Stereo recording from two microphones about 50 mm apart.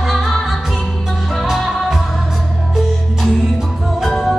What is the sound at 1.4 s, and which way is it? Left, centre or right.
Music, centre.